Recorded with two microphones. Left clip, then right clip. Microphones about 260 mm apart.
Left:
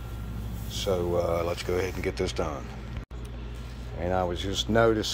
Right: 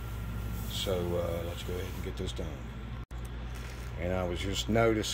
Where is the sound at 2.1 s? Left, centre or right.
Left.